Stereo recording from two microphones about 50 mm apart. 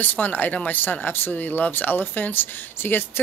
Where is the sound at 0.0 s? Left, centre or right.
Left.